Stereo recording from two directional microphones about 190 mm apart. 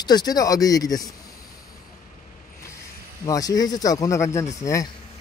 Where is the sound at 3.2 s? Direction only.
20° left (ahead or behind).